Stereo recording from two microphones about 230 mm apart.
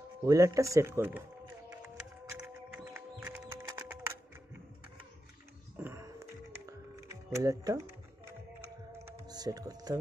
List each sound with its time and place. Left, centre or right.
0.2 s speech: centre
1.7 s music: centre
5.8 s music: centre
9.0 s typing: centre